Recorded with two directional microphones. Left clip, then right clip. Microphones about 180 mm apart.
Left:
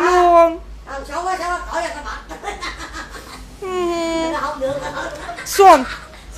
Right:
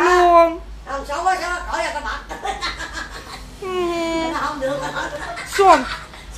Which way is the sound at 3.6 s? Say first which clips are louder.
Left 1 dB; 10° left (ahead or behind).